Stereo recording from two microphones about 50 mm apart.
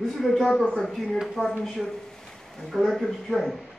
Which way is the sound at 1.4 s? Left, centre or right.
Centre.